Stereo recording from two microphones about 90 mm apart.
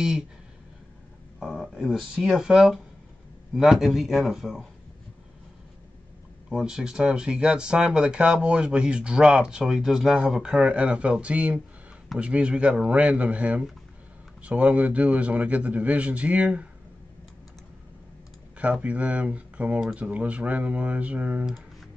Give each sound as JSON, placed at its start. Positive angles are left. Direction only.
{"t": 1.4, "sound": "a man's voice", "side_deg": 5}
{"t": 6.5, "sound": "speech", "side_deg": -10}
{"t": 18.6, "sound": "speech", "side_deg": -15}